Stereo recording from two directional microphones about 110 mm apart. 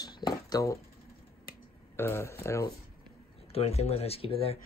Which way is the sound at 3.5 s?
70° left (ahead or behind).